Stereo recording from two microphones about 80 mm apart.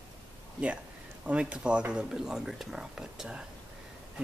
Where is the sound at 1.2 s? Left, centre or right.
Centre.